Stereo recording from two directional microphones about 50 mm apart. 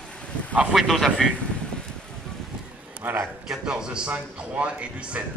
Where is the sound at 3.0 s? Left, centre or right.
Right.